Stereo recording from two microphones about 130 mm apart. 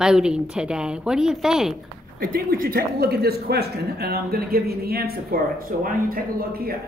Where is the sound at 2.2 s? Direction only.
90° right.